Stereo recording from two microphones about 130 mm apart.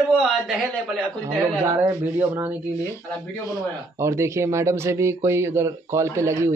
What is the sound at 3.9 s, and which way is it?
Speech, 20° right (ahead or behind).